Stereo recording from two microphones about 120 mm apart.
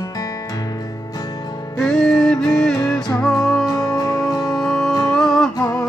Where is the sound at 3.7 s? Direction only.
30° left (ahead or behind).